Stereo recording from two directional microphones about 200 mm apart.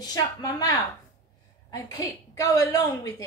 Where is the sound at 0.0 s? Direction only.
20° left (ahead or behind).